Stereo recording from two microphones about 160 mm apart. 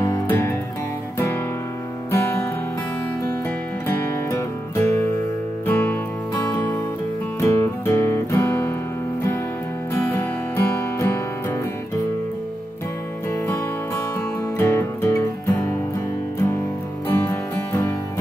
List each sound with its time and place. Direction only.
0.0 s music: 15° left (ahead or behind)
3.8 s music: 20° left (ahead or behind)
7.3 s music: 15° left (ahead or behind)
10.0 s music: 10° left (ahead or behind)
13.3 s music: 15° left (ahead or behind)
17.1 s music: 15° left (ahead or behind)